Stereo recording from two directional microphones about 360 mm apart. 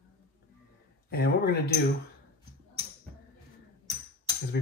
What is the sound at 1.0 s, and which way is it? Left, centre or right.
Speech, left.